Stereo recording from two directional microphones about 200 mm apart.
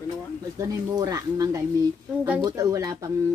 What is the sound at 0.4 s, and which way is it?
Speech, 15° right (ahead or behind).